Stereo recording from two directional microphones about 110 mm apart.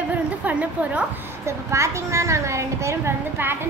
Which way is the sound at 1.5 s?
25° right (ahead or behind).